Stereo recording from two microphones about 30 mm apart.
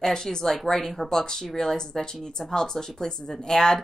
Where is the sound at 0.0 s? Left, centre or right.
Centre.